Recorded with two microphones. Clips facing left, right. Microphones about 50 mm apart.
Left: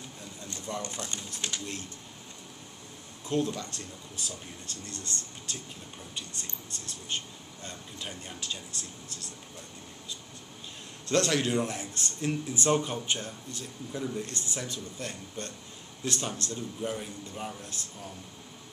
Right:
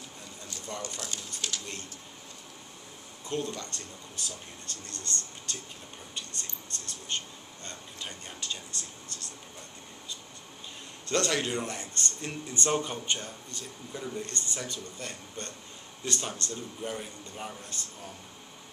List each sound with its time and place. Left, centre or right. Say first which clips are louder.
0.8 s speech: left 1 dB; left
3.3 s speech: left 4 dB; centre
11.1 s speech: left 2 dB; centre